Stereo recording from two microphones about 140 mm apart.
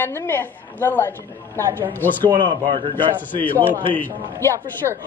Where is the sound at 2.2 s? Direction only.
35° right (ahead or behind).